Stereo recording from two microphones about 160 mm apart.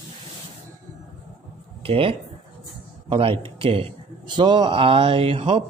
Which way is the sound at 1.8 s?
35° right (ahead or behind).